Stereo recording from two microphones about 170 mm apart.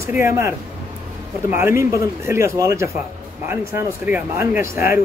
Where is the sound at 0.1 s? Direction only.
15° right (ahead or behind).